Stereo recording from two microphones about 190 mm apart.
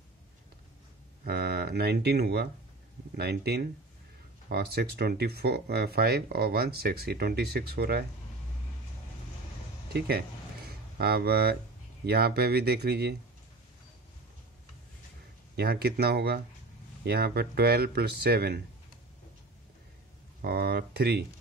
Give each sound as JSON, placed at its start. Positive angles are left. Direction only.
{"t": 1.2, "sound": "speech", "side_deg": -55}
{"t": 9.9, "sound": "speech", "side_deg": -55}
{"t": 10.7, "sound": "a sound", "side_deg": -55}
{"t": 12.1, "sound": "speech", "side_deg": -55}
{"t": 15.5, "sound": "speech", "side_deg": -55}
{"t": 20.4, "sound": "speech", "side_deg": -55}